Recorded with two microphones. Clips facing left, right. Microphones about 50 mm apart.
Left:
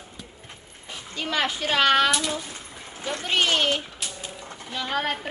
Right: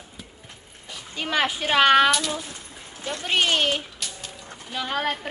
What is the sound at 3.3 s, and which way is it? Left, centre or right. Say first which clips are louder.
Speech: right 1 dB; centre.